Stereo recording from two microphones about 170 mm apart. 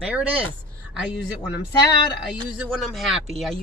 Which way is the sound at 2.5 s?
Centre (ahead or behind).